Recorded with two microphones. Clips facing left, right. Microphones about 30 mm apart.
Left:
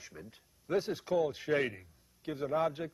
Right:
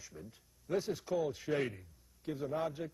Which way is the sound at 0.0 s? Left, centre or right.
Left.